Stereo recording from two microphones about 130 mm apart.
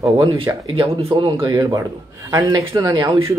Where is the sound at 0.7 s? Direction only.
45° right (ahead or behind).